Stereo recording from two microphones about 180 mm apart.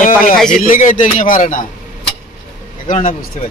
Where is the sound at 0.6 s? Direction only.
45° left (ahead or behind).